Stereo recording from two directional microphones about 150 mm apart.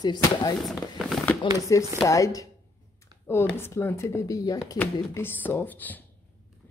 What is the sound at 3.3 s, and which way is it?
Speech, 15° left (ahead or behind).